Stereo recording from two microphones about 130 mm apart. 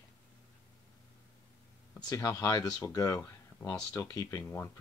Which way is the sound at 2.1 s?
25° left (ahead or behind).